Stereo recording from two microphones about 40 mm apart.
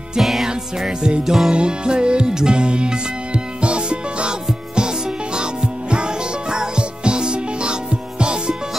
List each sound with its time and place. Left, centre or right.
0.2 s music: centre
0.5 s music: right
1.2 s music: centre
1.5 s music: right